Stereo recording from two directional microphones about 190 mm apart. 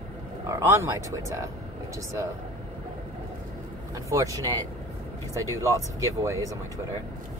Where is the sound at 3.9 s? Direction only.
20° right (ahead or behind).